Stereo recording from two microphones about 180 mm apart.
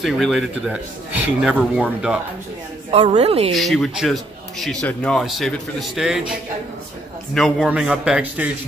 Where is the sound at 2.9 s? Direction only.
35° right (ahead or behind).